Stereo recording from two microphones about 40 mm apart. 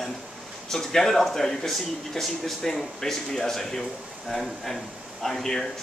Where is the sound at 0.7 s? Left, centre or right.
Centre.